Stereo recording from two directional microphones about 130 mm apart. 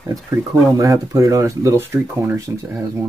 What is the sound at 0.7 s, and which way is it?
Speech, 25° right (ahead or behind).